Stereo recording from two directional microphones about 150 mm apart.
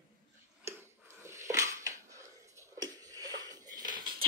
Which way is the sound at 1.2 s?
20° right (ahead or behind).